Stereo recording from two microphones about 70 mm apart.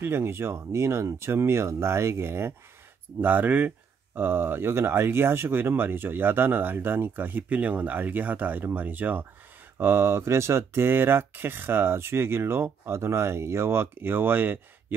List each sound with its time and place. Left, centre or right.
0.0 s speech: right
3.2 s speech: right